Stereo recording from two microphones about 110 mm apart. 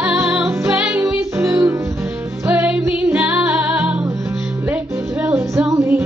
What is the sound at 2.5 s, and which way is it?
Music, 10° right (ahead or behind).